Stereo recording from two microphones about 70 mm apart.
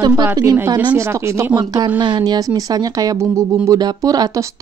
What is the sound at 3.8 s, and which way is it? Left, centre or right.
Speech, right.